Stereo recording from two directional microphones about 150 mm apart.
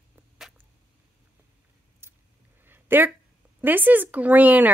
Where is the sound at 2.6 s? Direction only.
15° right (ahead or behind).